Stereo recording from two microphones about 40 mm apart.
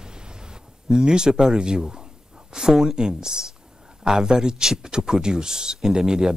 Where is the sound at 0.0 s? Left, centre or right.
Right.